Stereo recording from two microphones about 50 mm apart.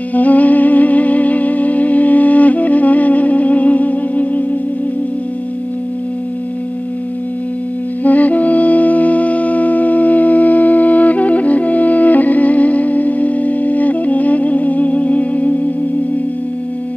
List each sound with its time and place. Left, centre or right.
0.1 s music: left
8.0 s music: left